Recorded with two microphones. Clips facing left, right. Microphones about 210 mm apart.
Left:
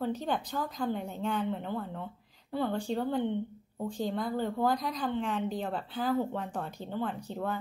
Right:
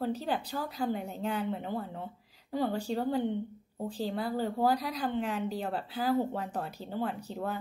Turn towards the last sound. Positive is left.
turn(degrees=-10)  # may be behind; listen again after turning